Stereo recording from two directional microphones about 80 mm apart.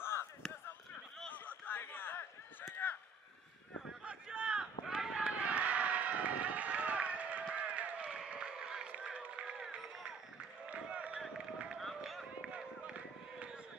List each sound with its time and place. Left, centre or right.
0.0 s a sound: left
1.4 s a sound: left
4.0 s run: centre
5.4 s run: centre
11.1 s run: centre
12.4 s run: centre